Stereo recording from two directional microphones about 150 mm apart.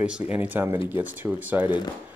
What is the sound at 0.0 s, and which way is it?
Speech, 5° right (ahead or behind).